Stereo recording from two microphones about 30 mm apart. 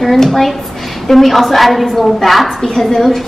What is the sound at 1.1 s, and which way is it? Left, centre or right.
A woman's voice, centre.